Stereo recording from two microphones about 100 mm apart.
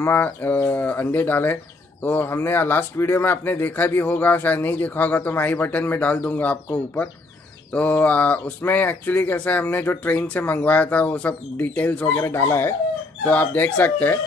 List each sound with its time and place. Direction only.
0.0 s speech: 20° left (ahead or behind)
12.1 s speech: 25° left (ahead or behind)